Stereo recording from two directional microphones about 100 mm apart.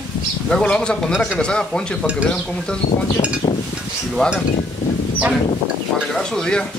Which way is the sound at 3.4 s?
55° left (ahead or behind).